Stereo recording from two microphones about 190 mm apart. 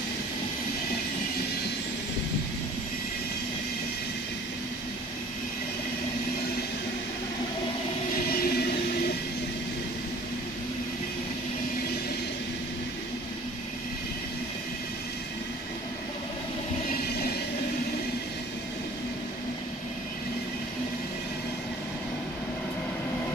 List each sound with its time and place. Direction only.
8.4 s train: 55° left (ahead or behind)